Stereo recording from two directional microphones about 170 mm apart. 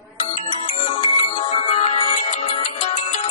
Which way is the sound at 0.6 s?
40° left (ahead or behind).